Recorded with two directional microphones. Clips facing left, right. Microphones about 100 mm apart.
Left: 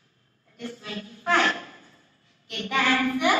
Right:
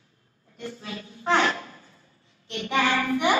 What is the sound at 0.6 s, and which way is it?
A woman's voice, 20° right (ahead or behind).